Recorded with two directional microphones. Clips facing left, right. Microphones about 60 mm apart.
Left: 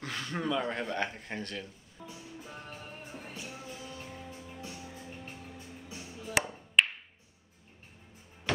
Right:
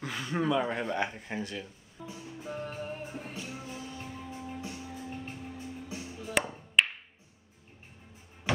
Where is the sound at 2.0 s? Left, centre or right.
Centre.